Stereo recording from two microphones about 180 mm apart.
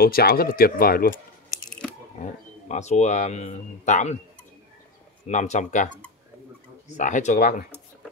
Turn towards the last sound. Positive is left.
turn(degrees=50)  # may be behind; listen again after turning